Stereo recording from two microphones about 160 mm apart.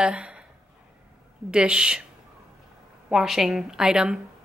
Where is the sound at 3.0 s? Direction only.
Centre (ahead or behind).